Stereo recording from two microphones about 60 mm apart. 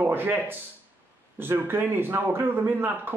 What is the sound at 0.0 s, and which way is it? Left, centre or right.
Speech, right.